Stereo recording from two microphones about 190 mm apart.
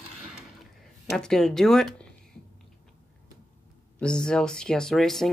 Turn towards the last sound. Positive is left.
turn(degrees=0)  # may be behind; listen again after turning